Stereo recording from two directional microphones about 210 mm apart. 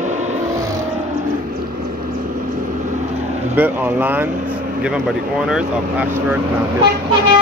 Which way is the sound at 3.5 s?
10° right (ahead or behind).